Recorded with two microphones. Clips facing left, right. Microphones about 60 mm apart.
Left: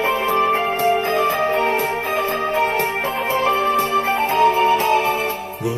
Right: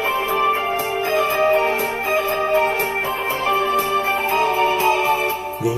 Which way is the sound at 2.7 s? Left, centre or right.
Left.